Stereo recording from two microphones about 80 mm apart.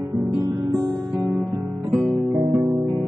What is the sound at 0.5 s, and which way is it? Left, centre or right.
Music, right.